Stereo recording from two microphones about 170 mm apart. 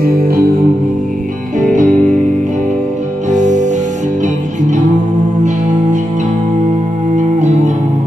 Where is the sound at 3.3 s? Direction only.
45° right (ahead or behind).